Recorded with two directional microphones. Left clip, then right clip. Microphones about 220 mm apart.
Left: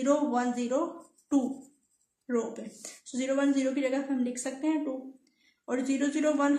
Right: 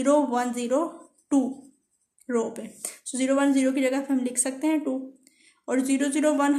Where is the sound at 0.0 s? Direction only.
50° right (ahead or behind).